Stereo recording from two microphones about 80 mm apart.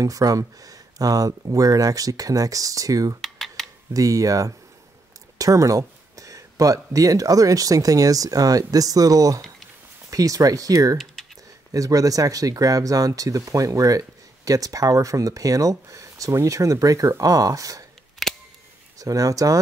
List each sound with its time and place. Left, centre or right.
0.0 s speech: right
3.2 s a sound: centre
3.9 s speech: right
18.2 s camera: centre
18.9 s speech: right